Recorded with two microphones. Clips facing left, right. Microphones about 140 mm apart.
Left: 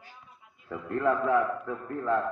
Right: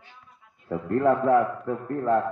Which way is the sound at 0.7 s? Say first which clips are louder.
Right 5 dB; 40° right (ahead or behind).